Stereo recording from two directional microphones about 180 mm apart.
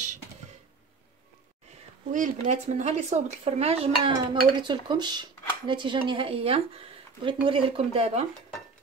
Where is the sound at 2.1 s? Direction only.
45° right (ahead or behind).